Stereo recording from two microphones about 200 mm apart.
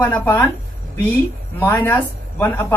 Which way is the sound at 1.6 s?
10° left (ahead or behind).